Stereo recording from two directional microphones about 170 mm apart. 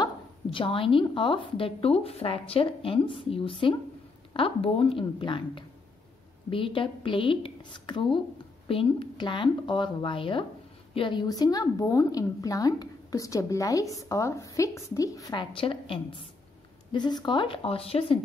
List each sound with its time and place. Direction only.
0.0 s a woman's voice: 30° left (ahead or behind)